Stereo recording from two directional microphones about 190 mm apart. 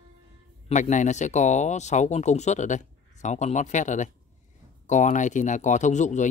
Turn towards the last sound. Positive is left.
turn(degrees=40)  # may be behind; listen again after turning